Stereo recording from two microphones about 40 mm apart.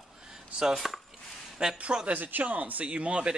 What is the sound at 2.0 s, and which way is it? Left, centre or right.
Speech, right.